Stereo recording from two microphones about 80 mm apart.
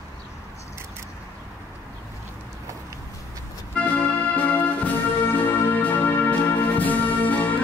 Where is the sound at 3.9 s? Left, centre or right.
Centre.